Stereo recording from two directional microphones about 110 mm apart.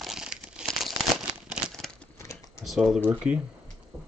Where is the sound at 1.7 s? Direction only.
5° left (ahead or behind).